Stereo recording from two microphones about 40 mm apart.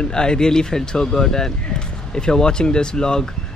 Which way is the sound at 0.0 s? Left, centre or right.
Centre.